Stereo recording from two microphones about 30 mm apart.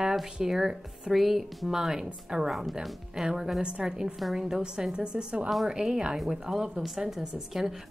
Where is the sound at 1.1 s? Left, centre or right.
Centre; by 2.5 s right.